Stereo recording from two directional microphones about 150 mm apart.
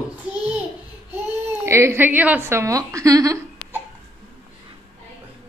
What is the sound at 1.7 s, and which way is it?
A woman's voice, 15° right (ahead or behind).